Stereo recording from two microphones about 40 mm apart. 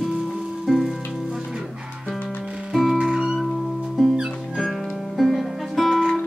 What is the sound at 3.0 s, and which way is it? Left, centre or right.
Music, centre.